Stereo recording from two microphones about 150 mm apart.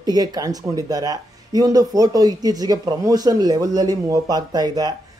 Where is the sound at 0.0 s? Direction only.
25° right (ahead or behind).